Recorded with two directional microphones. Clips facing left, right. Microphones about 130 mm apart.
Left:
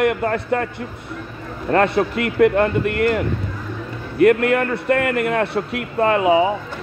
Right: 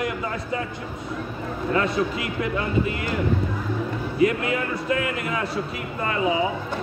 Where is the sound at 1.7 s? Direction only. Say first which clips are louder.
Left 7 dB; 65° left (ahead or behind).